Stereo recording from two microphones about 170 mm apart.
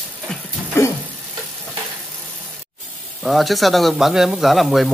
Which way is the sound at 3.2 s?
Centre (ahead or behind).